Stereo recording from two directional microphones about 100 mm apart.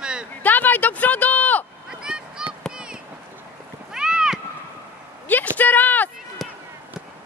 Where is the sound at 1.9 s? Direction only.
5° right (ahead or behind).